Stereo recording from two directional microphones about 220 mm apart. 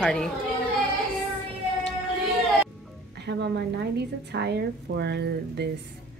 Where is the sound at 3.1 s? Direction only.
50° right (ahead or behind).